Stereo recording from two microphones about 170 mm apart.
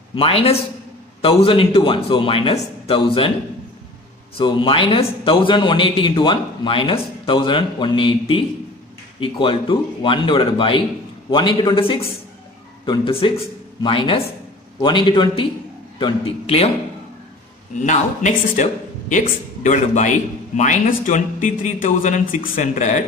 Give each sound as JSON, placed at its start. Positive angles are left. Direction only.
{"t": 0.1, "sound": "a man's voice", "side_deg": 35}
{"t": 4.4, "sound": "a man's voice", "side_deg": 30}
{"t": 17.8, "sound": "speech", "side_deg": 45}